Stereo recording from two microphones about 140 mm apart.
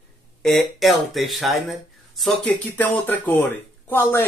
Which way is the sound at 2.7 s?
10° left (ahead or behind).